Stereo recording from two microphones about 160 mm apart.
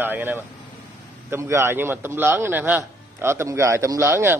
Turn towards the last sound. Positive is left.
turn(degrees=-15)  # may be behind; listen again after turning